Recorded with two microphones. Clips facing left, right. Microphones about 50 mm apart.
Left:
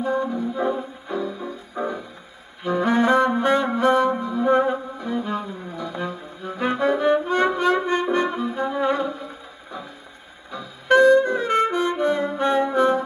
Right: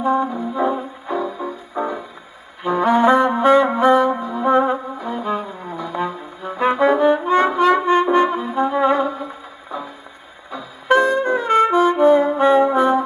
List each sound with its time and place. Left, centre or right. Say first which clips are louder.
0.0 s music: right 4 dB; right
7.7 s brass instrument: right 6 dB; right
10.9 s brass instrument: left 1 dB; centre